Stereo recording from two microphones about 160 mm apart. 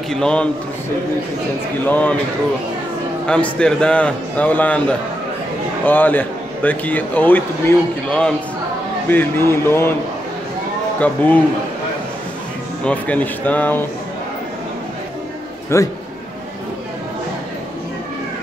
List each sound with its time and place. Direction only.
0.1 s a man's voice: 5° left (ahead or behind)
1.9 s a man's voice: 10° left (ahead or behind)
3.3 s a man's voice: 5° left (ahead or behind)
11.0 s a man's voice: 10° left (ahead or behind)
12.8 s a man's voice: 10° left (ahead or behind)
15.7 s a man's voice: 15° left (ahead or behind)